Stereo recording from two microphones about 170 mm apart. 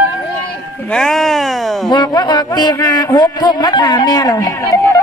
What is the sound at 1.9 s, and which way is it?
A man's voice, 25° left (ahead or behind).